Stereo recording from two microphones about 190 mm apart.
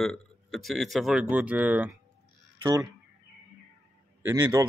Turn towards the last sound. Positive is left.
turn(degrees=-15)  # may be behind; listen again after turning